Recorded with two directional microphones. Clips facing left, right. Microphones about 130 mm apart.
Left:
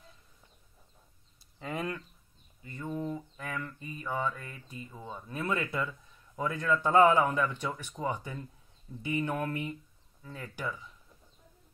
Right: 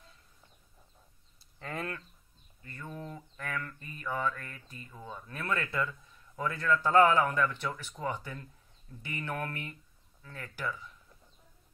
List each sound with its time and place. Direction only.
1.6 s mantra: 15° left (ahead or behind)